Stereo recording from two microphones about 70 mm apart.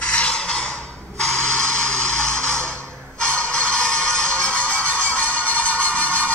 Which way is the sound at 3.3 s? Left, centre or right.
Centre.